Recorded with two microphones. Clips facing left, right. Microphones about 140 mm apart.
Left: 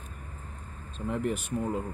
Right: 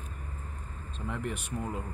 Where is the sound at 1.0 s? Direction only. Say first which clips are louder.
Left 5 dB; 40° left (ahead or behind).